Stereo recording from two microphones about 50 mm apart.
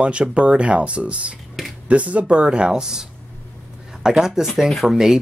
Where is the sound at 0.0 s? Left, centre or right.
Right; by 4.9 s centre.